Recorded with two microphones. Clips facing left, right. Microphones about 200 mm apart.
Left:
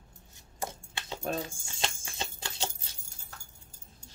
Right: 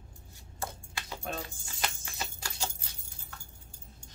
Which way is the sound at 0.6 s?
25° left (ahead or behind).